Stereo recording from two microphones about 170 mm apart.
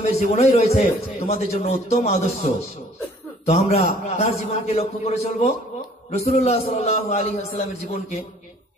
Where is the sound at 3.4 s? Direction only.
35° left (ahead or behind).